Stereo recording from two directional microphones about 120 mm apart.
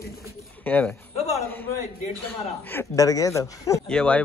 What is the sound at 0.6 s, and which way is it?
Speech, 15° left (ahead or behind).